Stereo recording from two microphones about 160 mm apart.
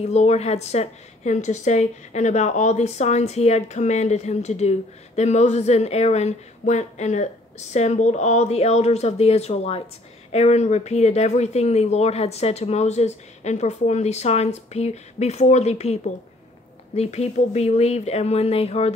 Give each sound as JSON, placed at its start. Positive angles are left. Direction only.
{"t": 0.0, "sound": "a woman's voice", "side_deg": 45}